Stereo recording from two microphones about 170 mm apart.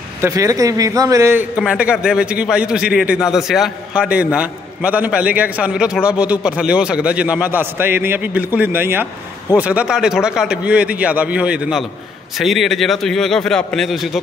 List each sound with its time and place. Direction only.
0.2 s a man's voice: 20° right (ahead or behind)
1.6 s a man's voice: 5° right (ahead or behind)